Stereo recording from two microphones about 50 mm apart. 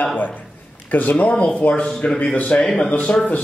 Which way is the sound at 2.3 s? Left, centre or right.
Left.